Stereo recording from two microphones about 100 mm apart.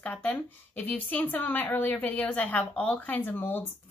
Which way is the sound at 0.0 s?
15° left (ahead or behind).